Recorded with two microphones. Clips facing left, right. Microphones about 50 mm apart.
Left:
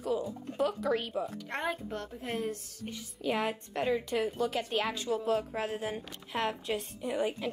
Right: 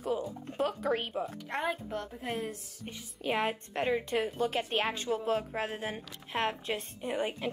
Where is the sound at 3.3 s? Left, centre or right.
Right.